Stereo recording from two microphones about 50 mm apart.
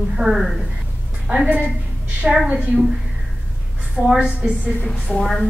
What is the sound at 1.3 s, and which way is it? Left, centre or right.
Speech, right.